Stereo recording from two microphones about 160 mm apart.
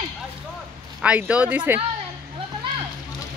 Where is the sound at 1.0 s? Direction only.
10° right (ahead or behind).